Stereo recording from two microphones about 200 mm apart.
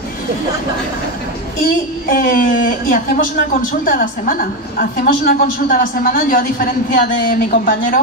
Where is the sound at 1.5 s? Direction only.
45° left (ahead or behind).